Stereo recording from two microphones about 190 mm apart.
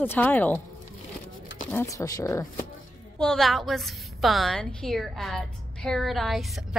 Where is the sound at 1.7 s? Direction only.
15° left (ahead or behind).